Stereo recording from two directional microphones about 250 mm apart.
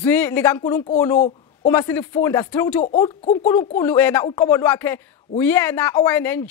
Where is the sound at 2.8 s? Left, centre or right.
Left.